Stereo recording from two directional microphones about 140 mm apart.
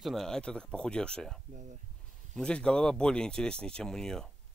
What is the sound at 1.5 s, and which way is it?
Speech, 60° right (ahead or behind).